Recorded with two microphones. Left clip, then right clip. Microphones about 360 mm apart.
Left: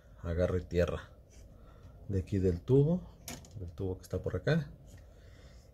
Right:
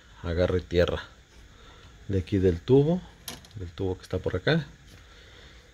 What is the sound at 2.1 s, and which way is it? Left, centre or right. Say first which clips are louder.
Speech: right 8 dB; right.